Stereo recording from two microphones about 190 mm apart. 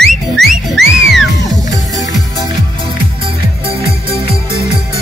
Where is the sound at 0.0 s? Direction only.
Centre (ahead or behind).